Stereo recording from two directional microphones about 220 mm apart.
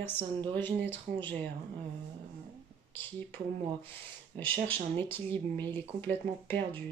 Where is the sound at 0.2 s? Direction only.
25° right (ahead or behind).